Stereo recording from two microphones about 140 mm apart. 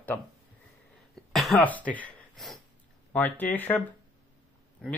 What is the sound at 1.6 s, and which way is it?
Speech, 10° left (ahead or behind).